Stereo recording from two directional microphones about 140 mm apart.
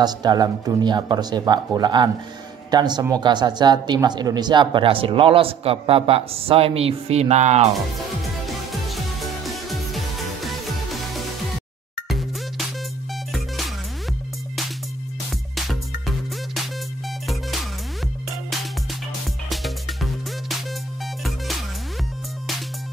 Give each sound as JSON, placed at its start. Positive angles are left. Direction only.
{"t": 0.0, "sound": "speech", "side_deg": -30}
{"t": 8.8, "sound": "music", "side_deg": 0}
{"t": 12.1, "sound": "music", "side_deg": 0}
{"t": 15.5, "sound": "music", "side_deg": 0}
{"t": 19.5, "sound": "music", "side_deg": 0}